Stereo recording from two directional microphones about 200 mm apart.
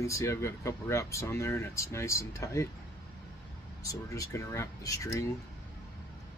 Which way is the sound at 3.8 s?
15° left (ahead or behind).